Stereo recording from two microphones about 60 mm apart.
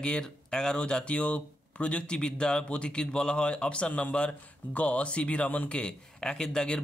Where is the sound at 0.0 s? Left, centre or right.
Centre.